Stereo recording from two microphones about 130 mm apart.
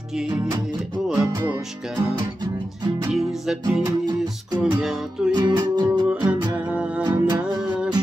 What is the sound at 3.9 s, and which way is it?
Music, 30° right (ahead or behind).